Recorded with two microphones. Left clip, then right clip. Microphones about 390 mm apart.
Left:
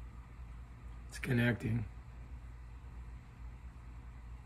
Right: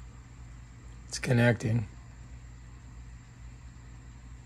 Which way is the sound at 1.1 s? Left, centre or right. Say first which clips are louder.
Right 8 dB; centre.